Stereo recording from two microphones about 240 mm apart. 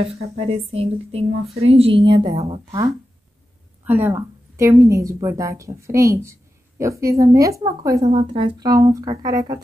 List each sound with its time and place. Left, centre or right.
0.0 s speech: right